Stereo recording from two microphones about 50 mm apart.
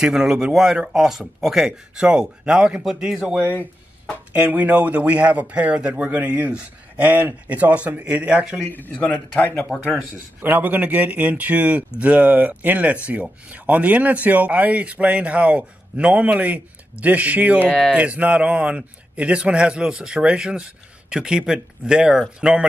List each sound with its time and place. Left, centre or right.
0.0 s speech: centre
2.0 s a man's voice: centre
4.3 s a man's voice: right
8.9 s speech: left
10.4 s a man's voice: right